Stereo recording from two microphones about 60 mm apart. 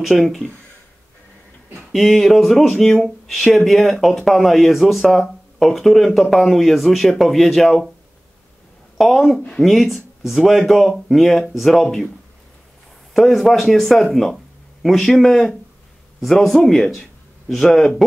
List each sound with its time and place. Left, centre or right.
0.1 s speech: centre
1.9 s speech: centre
8.9 s speech: centre
13.1 s speech: centre